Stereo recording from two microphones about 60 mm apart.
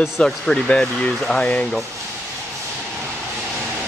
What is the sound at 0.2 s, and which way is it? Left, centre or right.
Speech, centre.